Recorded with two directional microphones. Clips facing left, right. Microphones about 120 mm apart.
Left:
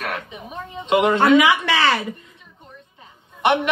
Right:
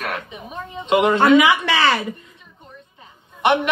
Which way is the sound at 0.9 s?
20° right (ahead or behind).